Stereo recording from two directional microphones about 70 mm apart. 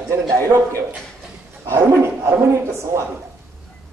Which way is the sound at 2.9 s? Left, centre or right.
Right.